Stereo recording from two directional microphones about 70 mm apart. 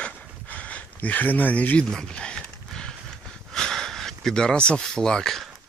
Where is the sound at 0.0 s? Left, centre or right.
Centre.